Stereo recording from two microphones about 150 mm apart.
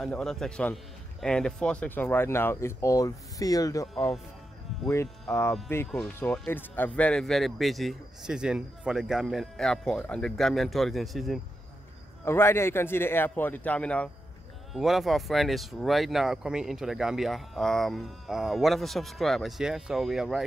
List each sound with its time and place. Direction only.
0.0 s speech: 5° left (ahead or behind)
12.3 s speech: 15° left (ahead or behind); by 20.4 s centre (ahead or behind)